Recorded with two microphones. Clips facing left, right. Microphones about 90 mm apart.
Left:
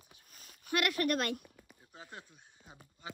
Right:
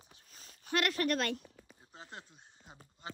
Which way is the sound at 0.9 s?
50° left (ahead or behind).